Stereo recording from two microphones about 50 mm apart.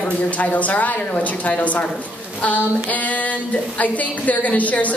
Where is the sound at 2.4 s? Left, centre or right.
Left.